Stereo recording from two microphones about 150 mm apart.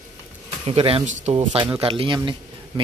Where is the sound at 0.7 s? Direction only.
40° right (ahead or behind).